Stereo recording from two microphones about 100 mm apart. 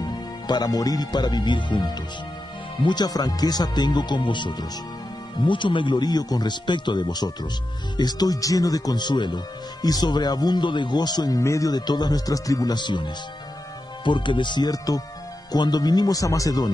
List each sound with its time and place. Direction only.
0.0 s speech: 40° left (ahead or behind)